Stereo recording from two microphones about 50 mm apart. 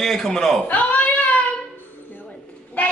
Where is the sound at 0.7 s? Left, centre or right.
Left.